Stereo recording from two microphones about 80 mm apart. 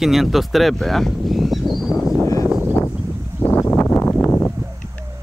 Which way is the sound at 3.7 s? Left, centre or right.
Left.